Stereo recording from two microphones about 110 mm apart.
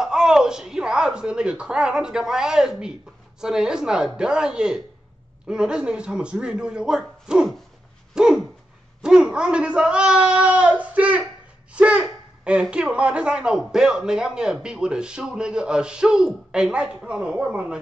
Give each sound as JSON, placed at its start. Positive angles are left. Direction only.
{"t": 0.0, "sound": "speech", "side_deg": -5}
{"t": 8.1, "sound": "dog", "side_deg": -5}
{"t": 9.0, "sound": "a sound", "side_deg": -5}
{"t": 12.0, "sound": "speech", "side_deg": -5}